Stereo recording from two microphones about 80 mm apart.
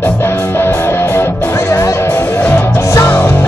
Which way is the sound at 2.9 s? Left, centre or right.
Left.